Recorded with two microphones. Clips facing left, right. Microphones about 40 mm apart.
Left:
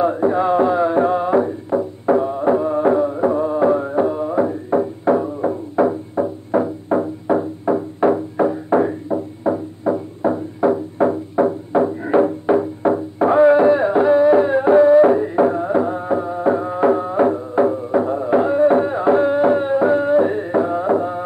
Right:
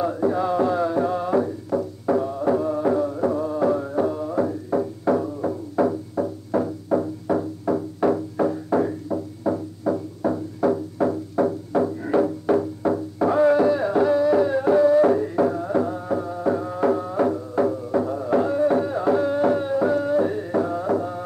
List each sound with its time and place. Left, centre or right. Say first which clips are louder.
0.0 s music: left 5 dB; left